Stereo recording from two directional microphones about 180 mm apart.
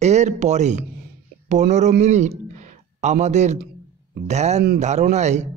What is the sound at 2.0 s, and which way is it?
A man's voice, 40° right (ahead or behind).